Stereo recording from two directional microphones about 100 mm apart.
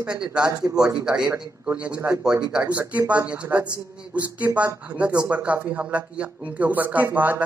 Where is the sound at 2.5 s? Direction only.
15° right (ahead or behind).